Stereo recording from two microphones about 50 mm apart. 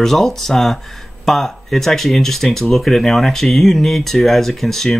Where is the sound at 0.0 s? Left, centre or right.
Centre.